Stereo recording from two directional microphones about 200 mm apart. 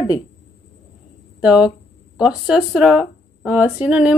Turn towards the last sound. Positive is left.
turn(degrees=-5)  # may be behind; listen again after turning